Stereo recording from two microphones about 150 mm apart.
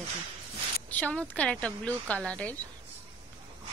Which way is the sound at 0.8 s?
10° left (ahead or behind).